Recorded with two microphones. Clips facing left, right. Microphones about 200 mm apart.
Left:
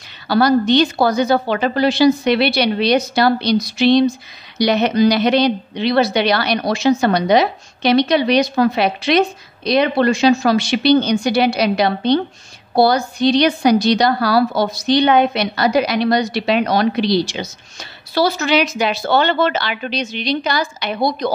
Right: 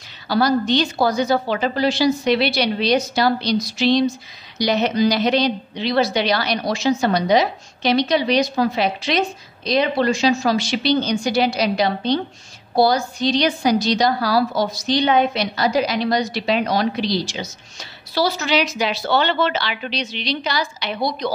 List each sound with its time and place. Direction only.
0.3 s a woman's voice: 65° left (ahead or behind)